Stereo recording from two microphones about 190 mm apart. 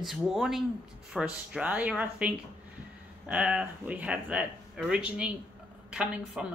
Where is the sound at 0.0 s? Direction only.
Centre (ahead or behind).